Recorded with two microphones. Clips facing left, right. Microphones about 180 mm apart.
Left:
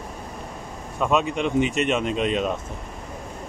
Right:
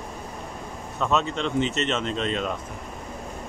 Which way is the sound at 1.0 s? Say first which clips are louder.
Left 3 dB; 15° left (ahead or behind).